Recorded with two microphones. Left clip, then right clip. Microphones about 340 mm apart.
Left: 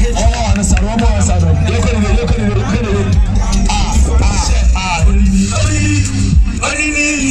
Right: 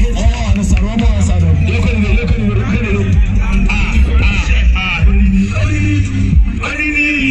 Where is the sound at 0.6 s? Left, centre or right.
Left.